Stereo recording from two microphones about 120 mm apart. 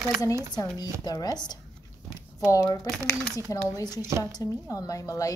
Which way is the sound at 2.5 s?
25° left (ahead or behind).